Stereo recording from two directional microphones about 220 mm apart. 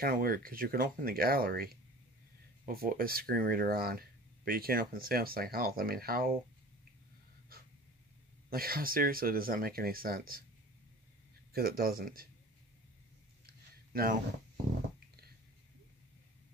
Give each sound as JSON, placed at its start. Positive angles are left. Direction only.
{"t": 0.0, "sound": "speech", "side_deg": -40}
{"t": 8.5, "sound": "speech", "side_deg": -40}
{"t": 11.5, "sound": "speech", "side_deg": -45}
{"t": 13.5, "sound": "a sound", "side_deg": -45}